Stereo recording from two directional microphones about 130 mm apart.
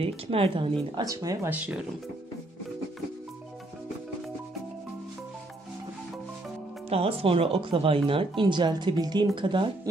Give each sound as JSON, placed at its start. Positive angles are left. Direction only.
{"t": 0.0, "sound": "speech", "side_deg": -45}
{"t": 0.9, "sound": "speech", "side_deg": -25}
{"t": 6.9, "sound": "speech", "side_deg": -50}